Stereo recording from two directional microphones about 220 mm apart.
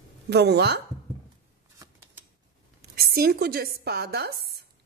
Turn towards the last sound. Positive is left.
turn(degrees=-45)  # may be behind; listen again after turning